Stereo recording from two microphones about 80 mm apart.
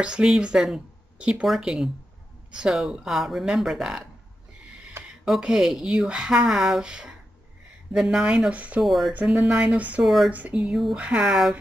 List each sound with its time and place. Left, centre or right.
0.0 s speech: centre
5.2 s speech: centre
8.8 s speech: centre
9.2 s speech: centre
10.0 s speech: centre
10.3 s speech: centre